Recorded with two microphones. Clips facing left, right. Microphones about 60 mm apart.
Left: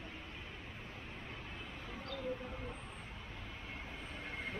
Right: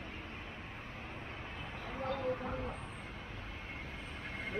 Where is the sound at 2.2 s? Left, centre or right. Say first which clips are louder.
Right 5 dB; right.